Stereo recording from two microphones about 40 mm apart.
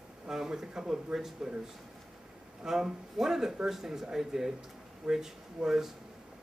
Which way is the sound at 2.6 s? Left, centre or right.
Centre.